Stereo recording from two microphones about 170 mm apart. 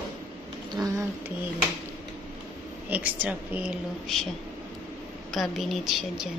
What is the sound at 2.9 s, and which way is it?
A woman's voice, 10° right (ahead or behind).